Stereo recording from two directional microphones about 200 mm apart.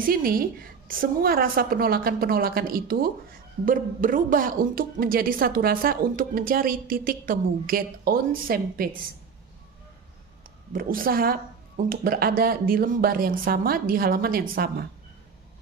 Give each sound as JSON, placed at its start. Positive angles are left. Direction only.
{"t": 0.0, "sound": "a woman's voice", "side_deg": -45}
{"t": 10.7, "sound": "a woman's voice", "side_deg": -45}